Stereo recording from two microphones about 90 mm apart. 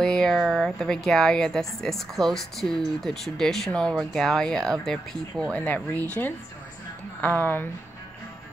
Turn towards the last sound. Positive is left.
turn(degrees=20)  # may be behind; listen again after turning